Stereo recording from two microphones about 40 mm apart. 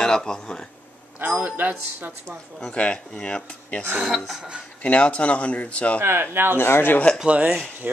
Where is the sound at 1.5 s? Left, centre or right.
Right.